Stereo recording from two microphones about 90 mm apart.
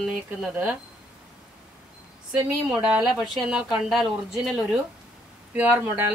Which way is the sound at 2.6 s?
10° right (ahead or behind).